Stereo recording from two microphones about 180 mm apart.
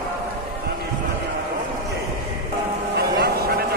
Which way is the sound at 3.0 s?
60° right (ahead or behind).